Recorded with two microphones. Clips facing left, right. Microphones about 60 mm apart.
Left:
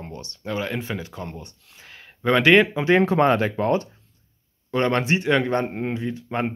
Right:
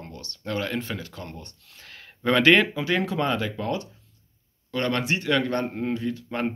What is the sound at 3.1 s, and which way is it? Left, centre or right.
Speech, left.